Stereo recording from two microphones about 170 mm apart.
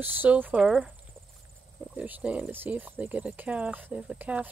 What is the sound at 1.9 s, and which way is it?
Speech, 10° right (ahead or behind).